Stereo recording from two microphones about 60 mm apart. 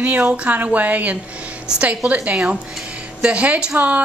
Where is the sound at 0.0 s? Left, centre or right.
Right.